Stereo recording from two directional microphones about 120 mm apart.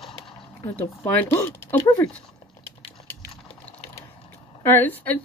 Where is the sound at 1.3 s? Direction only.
25° left (ahead or behind).